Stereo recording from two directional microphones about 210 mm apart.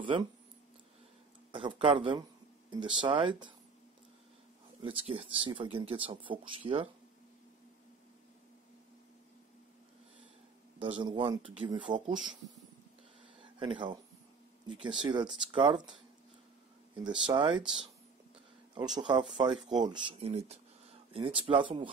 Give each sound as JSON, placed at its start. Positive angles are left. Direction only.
{"t": 1.5, "sound": "speech", "side_deg": -25}
{"t": 4.8, "sound": "speech", "side_deg": -25}
{"t": 10.8, "sound": "speech", "side_deg": -25}
{"t": 13.4, "sound": "a sound", "side_deg": -25}
{"t": 14.7, "sound": "speech", "side_deg": -20}
{"t": 18.8, "sound": "speech", "side_deg": -20}